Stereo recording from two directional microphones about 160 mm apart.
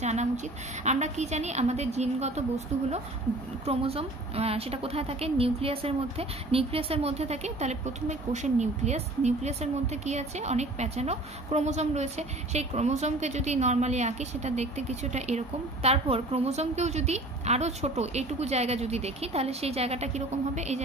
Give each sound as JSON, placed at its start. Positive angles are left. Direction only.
{"t": 0.0, "sound": "a woman's voice", "side_deg": -45}